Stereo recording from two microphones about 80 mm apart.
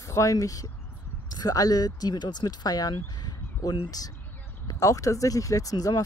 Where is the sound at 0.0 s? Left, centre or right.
Left.